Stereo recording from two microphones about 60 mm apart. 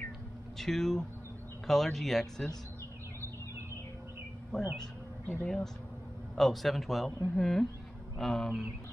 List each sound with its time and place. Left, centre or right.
0.6 s speech: centre
4.5 s speech: centre